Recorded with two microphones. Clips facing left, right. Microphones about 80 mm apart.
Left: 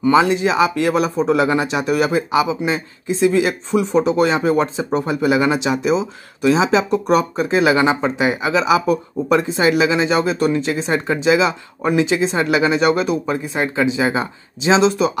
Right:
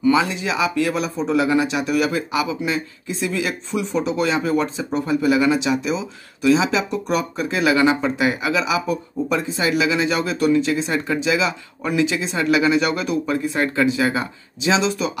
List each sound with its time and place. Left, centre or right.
0.0 s speech: left
8.8 s speech: left